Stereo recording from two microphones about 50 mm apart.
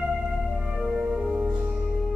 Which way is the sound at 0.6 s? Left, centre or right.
Centre.